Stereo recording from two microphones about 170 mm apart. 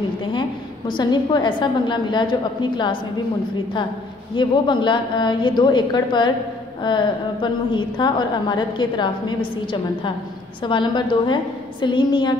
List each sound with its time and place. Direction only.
0.3 s a woman's voice: 25° left (ahead or behind)
4.4 s a woman's voice: 30° left (ahead or behind)